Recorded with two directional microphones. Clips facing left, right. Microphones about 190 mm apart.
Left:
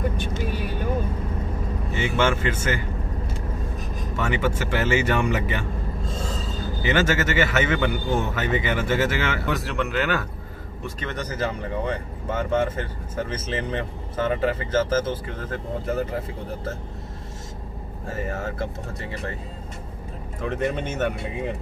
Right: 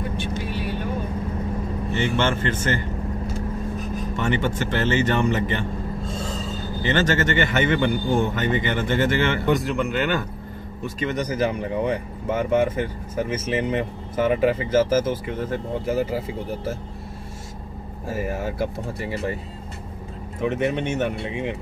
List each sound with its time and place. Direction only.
0.2 s vehicle: 45° left (ahead or behind)
1.9 s speech: 5° left (ahead or behind)
4.3 s speech: 5° left (ahead or behind)
6.8 s speech: 10° left (ahead or behind)
11.0 s speech: 10° right (ahead or behind)
18.1 s speech: 10° right (ahead or behind)
20.4 s speech: 5° right (ahead or behind)
21.2 s speech: 80° right